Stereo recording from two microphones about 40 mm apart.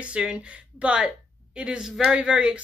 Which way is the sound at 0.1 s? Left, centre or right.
Right.